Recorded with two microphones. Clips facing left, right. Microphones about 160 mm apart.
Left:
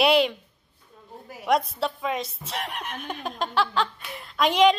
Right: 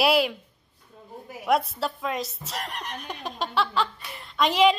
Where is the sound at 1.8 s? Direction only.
Centre (ahead or behind).